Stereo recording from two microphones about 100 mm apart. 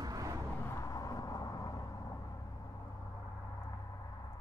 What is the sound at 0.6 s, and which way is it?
Vehicle, 25° left (ahead or behind).